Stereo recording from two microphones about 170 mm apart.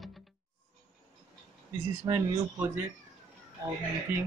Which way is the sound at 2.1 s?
25° right (ahead or behind).